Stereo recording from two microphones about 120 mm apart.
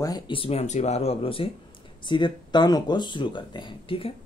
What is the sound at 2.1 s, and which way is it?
Speech, 40° left (ahead or behind).